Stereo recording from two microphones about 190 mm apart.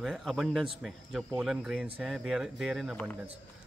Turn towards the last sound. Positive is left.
turn(degrees=0)  # may be behind; listen again after turning